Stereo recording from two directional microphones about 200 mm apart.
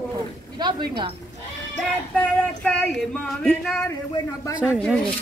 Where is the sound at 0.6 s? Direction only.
20° right (ahead or behind).